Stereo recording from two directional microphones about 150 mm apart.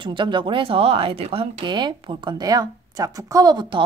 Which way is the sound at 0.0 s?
35° right (ahead or behind).